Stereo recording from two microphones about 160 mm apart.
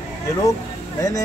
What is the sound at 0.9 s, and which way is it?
Speech, 20° left (ahead or behind).